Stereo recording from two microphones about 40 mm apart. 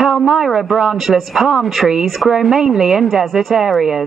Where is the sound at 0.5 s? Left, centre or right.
Centre.